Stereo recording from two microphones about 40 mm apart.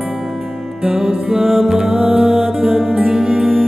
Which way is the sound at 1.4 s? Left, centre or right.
Centre.